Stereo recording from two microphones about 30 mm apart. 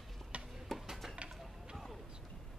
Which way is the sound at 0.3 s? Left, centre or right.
Right.